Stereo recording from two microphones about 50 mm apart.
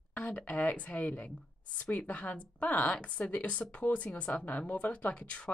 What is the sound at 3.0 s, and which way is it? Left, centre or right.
Speech, left.